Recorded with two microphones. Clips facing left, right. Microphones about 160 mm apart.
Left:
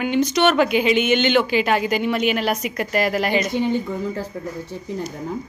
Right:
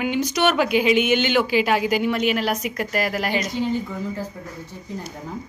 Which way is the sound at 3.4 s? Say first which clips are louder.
Left 3 dB; 60° left (ahead or behind).